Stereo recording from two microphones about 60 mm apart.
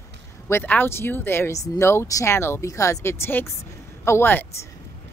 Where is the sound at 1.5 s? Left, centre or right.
Left.